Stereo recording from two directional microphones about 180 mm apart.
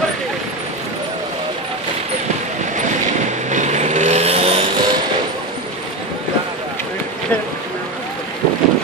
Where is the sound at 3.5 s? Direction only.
40° right (ahead or behind).